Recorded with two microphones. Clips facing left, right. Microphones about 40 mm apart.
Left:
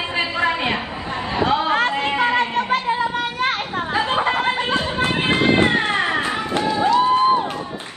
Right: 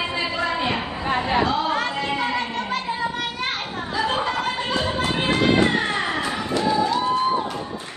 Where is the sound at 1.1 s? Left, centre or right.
Right.